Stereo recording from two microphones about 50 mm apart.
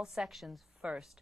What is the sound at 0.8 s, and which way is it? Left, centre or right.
Speech, right.